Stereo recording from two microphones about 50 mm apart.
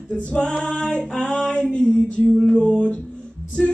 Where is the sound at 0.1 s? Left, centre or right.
Centre.